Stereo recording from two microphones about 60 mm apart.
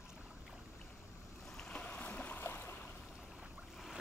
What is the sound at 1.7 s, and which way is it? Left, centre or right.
Boat, centre.